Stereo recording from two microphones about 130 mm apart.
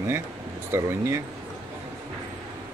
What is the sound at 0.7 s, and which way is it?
Speech, 20° right (ahead or behind).